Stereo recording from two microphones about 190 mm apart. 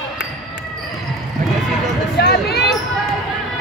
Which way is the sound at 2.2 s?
60° left (ahead or behind).